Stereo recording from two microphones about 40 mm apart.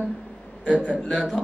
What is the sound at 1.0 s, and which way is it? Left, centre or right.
Speech, centre.